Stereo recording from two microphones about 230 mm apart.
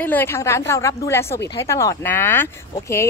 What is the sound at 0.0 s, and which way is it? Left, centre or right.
A woman's voice, centre.